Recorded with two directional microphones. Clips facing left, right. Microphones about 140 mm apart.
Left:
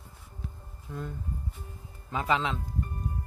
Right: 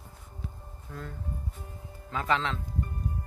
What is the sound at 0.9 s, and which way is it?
Speech, 10° left (ahead or behind).